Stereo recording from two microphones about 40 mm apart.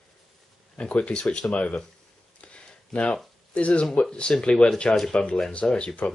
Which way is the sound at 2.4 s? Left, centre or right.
Left.